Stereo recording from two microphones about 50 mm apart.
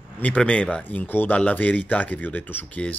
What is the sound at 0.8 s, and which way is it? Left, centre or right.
Speech, left.